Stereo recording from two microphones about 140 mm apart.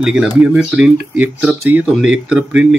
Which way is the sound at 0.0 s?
5° right (ahead or behind).